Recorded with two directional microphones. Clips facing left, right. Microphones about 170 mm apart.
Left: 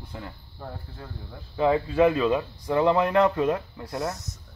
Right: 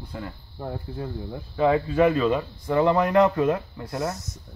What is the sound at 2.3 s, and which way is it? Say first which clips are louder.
Speech: right 1 dB; centre (ahead or behind).